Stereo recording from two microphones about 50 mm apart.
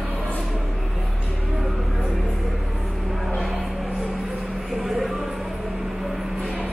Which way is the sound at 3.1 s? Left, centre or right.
Centre.